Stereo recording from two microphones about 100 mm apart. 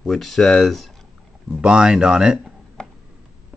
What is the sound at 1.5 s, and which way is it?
Speech, 10° right (ahead or behind).